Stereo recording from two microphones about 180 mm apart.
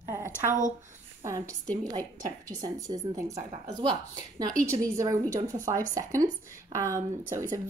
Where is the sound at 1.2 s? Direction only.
15° right (ahead or behind).